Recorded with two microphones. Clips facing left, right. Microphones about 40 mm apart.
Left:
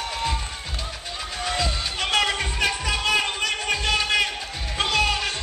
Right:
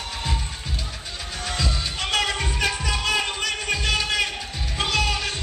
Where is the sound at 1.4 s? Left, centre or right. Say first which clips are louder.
Left 2 dB; centre.